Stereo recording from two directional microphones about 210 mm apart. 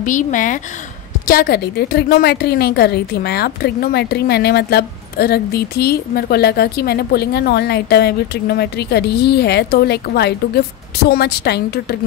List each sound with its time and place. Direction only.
0.0 s a woman's voice: 40° left (ahead or behind)